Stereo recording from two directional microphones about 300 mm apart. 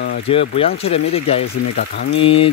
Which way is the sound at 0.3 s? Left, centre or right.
Centre.